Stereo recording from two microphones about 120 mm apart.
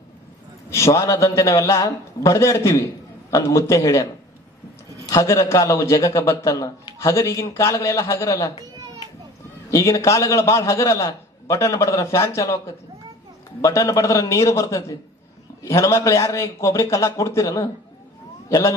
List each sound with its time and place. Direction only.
0.7 s a man's voice: 25° left (ahead or behind)
9.7 s a man's voice: 25° left (ahead or behind)